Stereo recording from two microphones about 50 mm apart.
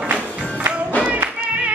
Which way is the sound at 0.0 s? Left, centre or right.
Right.